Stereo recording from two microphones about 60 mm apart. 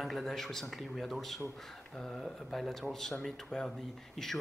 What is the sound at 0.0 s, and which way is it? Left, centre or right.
Speech, centre.